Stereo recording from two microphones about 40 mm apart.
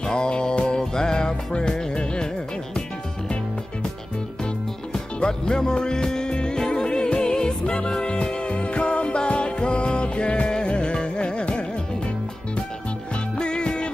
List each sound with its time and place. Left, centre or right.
0.0 s music: left
4.9 s music: centre
13.1 s music: left